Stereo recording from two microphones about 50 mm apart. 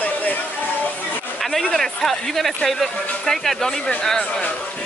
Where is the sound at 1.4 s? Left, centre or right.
Centre.